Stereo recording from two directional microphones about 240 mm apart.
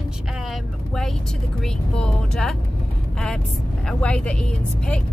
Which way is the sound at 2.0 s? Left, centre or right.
Centre.